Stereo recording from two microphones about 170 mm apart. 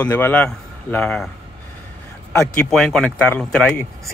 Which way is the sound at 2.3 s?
15° left (ahead or behind).